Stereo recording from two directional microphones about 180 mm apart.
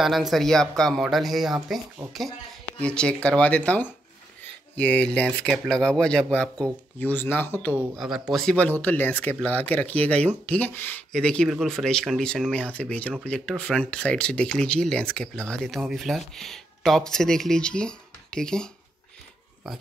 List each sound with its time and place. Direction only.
0.0 s speech: centre (ahead or behind)
2.0 s speech: 15° right (ahead or behind)
2.8 s speech: 5° left (ahead or behind)
7.7 s speech: 5° right (ahead or behind)